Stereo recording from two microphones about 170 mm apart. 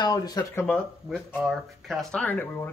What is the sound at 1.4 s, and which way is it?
Speech, centre (ahead or behind).